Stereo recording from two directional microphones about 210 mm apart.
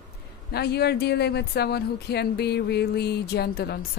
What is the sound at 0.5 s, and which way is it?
Speech, 50° left (ahead or behind).